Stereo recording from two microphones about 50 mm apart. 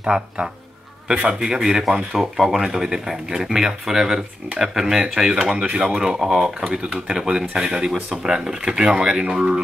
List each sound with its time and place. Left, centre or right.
0.0 s speech: right